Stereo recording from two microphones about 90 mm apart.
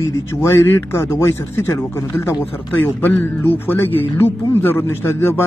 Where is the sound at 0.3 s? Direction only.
25° left (ahead or behind).